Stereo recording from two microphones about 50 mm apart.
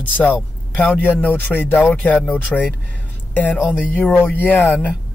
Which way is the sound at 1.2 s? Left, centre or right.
Left.